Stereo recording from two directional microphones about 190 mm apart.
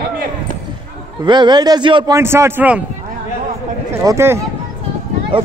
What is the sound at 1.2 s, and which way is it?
A man's voice, 25° right (ahead or behind).